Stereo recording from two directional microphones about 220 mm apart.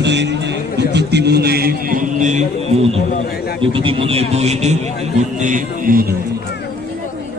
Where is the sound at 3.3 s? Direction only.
45° left (ahead or behind).